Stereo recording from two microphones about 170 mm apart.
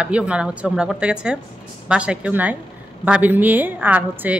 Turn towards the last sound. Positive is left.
turn(degrees=-10)  # may be behind; listen again after turning